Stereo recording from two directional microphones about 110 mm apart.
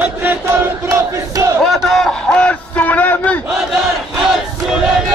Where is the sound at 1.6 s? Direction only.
Centre (ahead or behind).